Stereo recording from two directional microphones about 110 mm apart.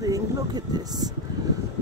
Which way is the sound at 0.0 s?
35° right (ahead or behind).